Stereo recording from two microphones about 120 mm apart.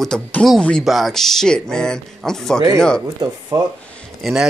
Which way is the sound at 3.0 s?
30° right (ahead or behind).